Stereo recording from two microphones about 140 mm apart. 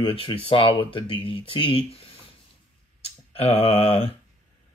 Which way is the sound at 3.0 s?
45° left (ahead or behind).